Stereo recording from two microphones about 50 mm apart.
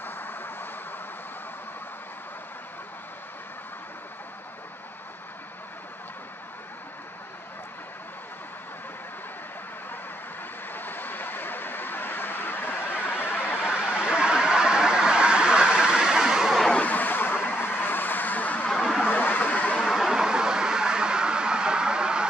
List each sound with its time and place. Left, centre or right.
0.0 s vehicle: left
10.7 s vehicle: left
14.0 s a sound: centre
16.8 s vehicle: left
18.7 s vehicle: centre
19.0 s vehicle: left
19.9 s vehicle: centre